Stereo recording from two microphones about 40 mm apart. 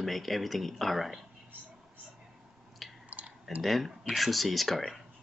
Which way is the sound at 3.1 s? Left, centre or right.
Right.